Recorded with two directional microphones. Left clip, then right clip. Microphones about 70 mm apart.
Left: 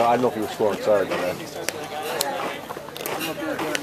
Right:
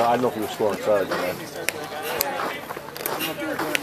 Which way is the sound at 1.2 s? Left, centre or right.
Right.